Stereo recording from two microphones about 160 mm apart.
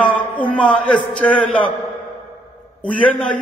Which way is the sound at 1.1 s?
10° left (ahead or behind).